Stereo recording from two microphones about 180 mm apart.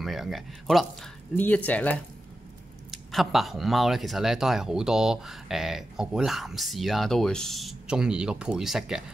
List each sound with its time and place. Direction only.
0.0 s speech: centre (ahead or behind)